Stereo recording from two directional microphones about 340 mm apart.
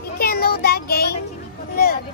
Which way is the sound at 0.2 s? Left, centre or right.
Left.